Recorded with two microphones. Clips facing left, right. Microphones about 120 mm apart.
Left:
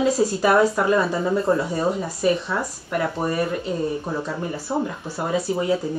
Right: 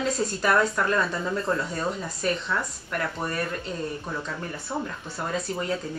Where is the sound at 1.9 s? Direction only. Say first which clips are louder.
Left 7 dB; 5° left (ahead or behind).